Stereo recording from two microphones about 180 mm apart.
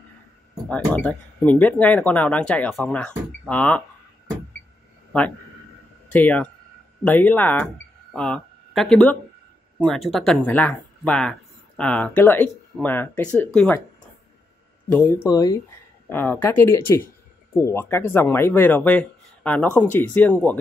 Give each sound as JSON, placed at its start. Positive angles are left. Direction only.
{"t": 0.7, "sound": "speech", "side_deg": 5}
{"t": 6.0, "sound": "speech", "side_deg": 10}
{"t": 14.9, "sound": "speech", "side_deg": 10}